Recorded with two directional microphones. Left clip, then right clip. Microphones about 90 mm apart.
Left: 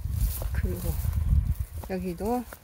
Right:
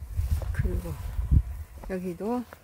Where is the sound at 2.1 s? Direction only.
Centre (ahead or behind).